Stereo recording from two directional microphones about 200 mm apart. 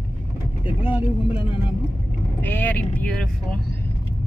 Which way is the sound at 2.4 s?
10° left (ahead or behind).